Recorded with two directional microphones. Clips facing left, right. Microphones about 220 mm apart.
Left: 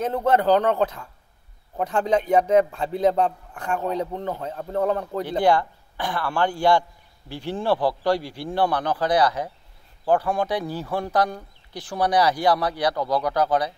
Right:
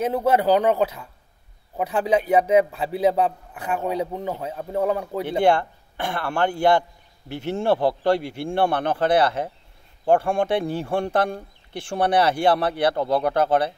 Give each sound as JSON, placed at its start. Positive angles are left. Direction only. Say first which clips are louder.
{"t": 0.0, "sound": "a man's voice", "louder": "right 1 dB", "side_deg": -10}
{"t": 5.4, "sound": "speech", "louder": "right 1 dB", "side_deg": -25}